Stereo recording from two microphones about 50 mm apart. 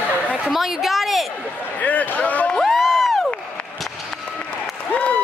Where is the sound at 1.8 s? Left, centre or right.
Left.